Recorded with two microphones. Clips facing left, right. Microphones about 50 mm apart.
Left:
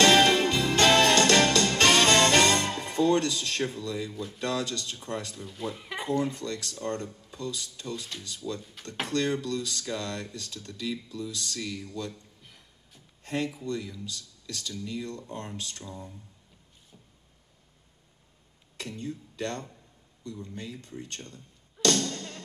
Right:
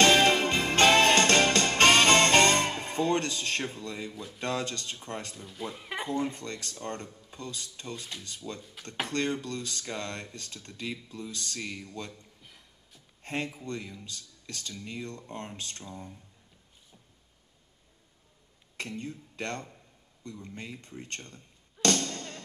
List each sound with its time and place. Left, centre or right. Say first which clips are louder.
0.2 s music: left 2 dB; right
4.4 s speech: left 1 dB; right
5.4 s speech: left 3 dB; centre
6.1 s speech: left 5 dB; right
8.8 s speech: left 2 dB; centre
9.1 s speech: left 4 dB; right
12.4 s music: even; centre
13.2 s speech: left 3 dB; right
18.8 s speech: left 1 dB; right
21.8 s music: left 2 dB; right